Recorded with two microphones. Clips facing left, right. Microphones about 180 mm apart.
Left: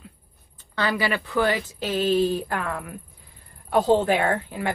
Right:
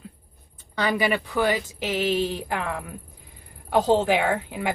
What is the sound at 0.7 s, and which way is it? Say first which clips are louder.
Speech: right 1 dB; 15° right (ahead or behind).